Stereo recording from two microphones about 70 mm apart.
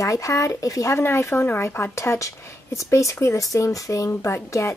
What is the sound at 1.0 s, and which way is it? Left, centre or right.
Speech, left.